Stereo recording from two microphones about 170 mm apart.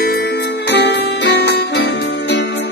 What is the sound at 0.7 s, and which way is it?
Music, 90° left.